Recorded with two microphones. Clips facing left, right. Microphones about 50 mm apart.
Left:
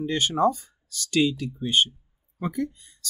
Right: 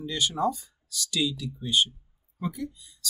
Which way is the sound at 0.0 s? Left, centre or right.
Left.